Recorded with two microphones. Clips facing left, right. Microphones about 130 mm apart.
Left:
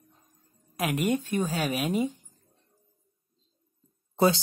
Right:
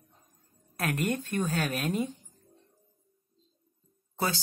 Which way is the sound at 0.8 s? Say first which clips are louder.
Left 3 dB; 10° left (ahead or behind).